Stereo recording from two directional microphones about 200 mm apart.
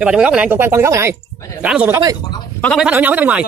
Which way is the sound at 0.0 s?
5° right (ahead or behind).